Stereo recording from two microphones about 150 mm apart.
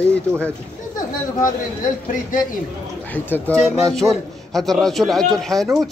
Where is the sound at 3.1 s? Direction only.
10° left (ahead or behind).